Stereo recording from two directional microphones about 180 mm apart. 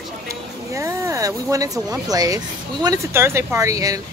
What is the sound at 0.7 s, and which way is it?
Speech, 15° right (ahead or behind).